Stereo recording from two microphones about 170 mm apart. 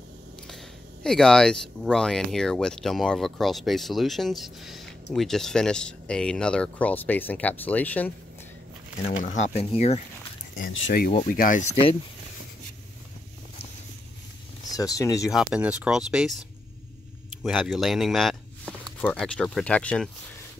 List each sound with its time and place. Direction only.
0.5 s speech: centre (ahead or behind)
9.2 s speech: 45° left (ahead or behind)
10.5 s speech: 55° left (ahead or behind)
14.7 s speech: 20° left (ahead or behind)
15.3 s speech: 5° right (ahead or behind)
17.4 s a sound: centre (ahead or behind)
18.9 s speech: 5° left (ahead or behind)